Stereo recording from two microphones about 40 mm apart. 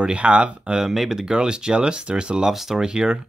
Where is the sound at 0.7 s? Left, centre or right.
Centre.